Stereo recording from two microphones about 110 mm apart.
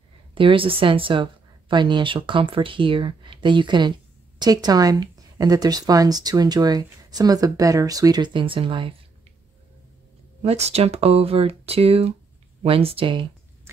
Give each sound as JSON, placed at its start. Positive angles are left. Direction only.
{"t": 0.3, "sound": "a woman's voice", "side_deg": -55}
{"t": 10.4, "sound": "speech", "side_deg": -75}